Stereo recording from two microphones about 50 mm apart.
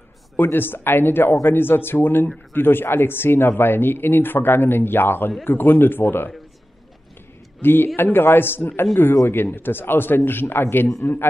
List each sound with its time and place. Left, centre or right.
0.4 s speech: left
7.6 s speech: left